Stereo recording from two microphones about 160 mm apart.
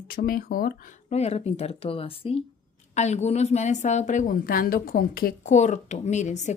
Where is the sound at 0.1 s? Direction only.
65° left (ahead or behind).